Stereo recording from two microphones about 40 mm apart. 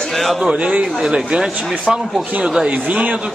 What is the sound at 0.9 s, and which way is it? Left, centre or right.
Speech, centre.